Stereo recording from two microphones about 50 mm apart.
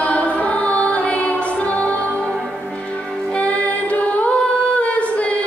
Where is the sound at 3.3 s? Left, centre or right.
Left.